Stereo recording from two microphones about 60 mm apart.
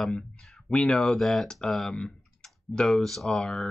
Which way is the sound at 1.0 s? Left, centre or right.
Centre.